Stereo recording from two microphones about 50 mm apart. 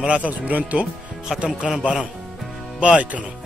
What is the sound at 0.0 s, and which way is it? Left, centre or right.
Speech, right.